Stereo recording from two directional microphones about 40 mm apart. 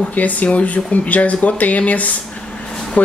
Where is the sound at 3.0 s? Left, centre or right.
Left.